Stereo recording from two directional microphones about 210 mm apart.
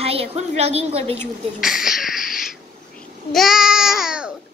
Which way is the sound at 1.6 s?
Centre (ahead or behind).